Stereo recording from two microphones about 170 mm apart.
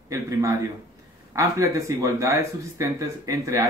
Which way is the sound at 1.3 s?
20° right (ahead or behind).